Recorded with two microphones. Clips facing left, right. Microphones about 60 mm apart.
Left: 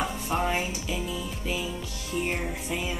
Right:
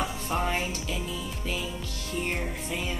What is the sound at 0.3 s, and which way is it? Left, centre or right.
Music, centre.